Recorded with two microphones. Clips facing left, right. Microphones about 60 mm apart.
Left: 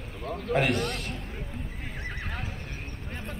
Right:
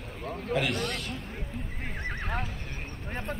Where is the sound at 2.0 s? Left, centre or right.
Right.